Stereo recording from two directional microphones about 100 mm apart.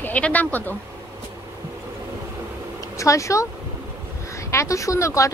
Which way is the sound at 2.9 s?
30° left (ahead or behind).